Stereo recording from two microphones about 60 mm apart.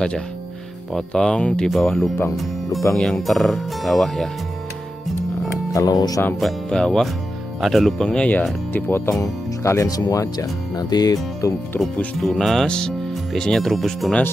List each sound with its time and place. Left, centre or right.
0.9 s speech: centre
1.7 s speech: centre
5.7 s speech: left
6.4 s speech: centre
8.0 s speech: centre
8.7 s speech: left
9.2 s speech: left
9.8 s speech: left
12.2 s speech: centre